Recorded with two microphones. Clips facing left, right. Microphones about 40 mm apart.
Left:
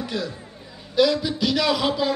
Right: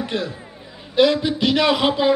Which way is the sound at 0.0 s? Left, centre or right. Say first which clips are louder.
Right 3 dB; right.